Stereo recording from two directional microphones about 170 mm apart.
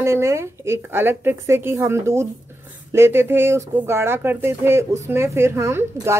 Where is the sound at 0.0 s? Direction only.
15° right (ahead or behind).